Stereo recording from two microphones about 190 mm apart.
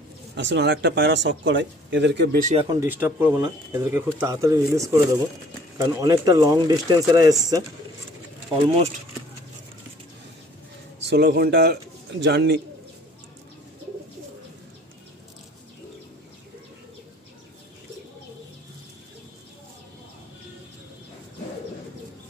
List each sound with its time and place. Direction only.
0.4 s speech: 70° right (ahead or behind)
2.8 s speech: 10° right (ahead or behind)
11.1 s a man's voice: 60° right (ahead or behind)